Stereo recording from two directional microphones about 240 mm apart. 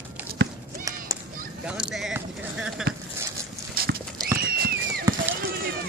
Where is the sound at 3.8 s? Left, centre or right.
Right.